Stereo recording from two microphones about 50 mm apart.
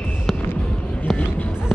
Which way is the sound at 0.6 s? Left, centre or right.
Left.